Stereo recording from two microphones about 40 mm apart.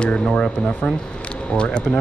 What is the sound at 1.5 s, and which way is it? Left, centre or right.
Speech, left.